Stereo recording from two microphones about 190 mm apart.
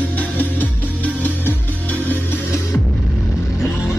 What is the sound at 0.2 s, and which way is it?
Music, 10° left (ahead or behind).